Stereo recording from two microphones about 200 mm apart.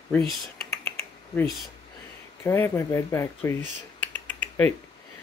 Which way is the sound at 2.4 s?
15° left (ahead or behind).